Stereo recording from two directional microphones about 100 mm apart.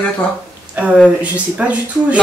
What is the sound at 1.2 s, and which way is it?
A woman's voice, 15° right (ahead or behind).